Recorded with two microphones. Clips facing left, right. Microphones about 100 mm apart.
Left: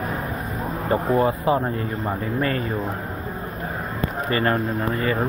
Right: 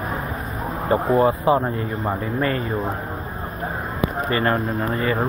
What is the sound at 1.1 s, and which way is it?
Speech, 30° right (ahead or behind).